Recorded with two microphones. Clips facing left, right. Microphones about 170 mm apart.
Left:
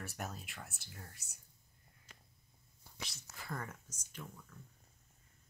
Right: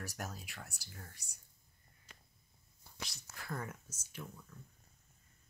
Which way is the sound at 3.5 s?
5° right (ahead or behind).